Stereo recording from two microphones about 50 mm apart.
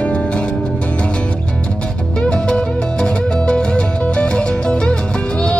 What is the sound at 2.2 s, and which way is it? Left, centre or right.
Music, centre.